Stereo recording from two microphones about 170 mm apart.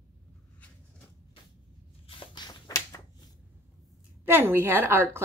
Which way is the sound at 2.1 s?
30° left (ahead or behind).